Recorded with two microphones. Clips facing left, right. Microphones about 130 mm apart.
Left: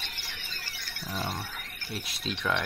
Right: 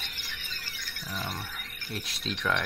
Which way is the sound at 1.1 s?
35° left (ahead or behind).